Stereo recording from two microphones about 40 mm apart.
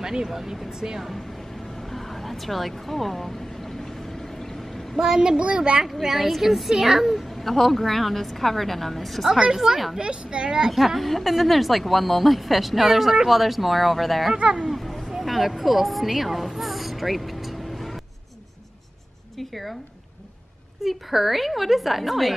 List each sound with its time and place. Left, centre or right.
0.0 s speech: centre
1.8 s a sound: centre
4.9 s speech: centre
5.4 s speech: right
6.0 s a woman's voice: centre
7.4 s a woman's voice: centre
9.9 s speech: right
10.7 s a woman's voice: centre
14.3 s speech: right
14.8 s a sound: centre
19.3 s speech: centre
20.8 s a woman's voice: centre